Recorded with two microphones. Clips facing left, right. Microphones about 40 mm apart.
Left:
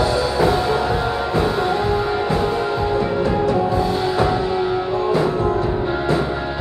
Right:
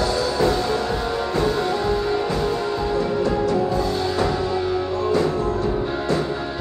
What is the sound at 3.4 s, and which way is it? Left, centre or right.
Music, centre.